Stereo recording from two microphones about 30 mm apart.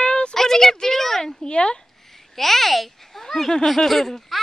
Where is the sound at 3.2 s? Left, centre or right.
Centre.